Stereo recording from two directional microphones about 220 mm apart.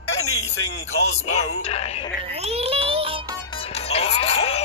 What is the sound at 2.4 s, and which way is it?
Speech, 25° right (ahead or behind).